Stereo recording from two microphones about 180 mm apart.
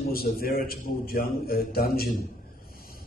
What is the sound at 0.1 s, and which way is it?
A man's voice, 55° left (ahead or behind).